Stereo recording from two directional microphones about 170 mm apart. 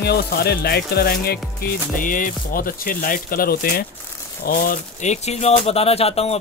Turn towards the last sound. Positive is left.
turn(degrees=35)  # may be behind; listen again after turning